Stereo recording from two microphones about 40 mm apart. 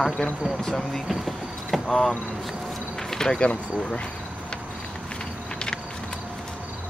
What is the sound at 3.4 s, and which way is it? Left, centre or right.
Speech, left.